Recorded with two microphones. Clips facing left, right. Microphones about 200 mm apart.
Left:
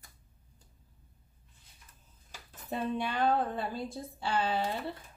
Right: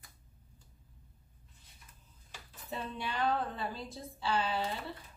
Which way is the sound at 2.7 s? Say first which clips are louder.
Left 6 dB; 50° left (ahead or behind).